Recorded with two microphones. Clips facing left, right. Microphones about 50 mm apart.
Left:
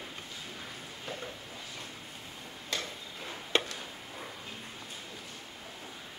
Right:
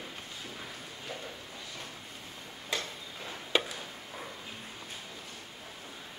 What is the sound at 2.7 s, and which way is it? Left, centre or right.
Tick-tock, centre.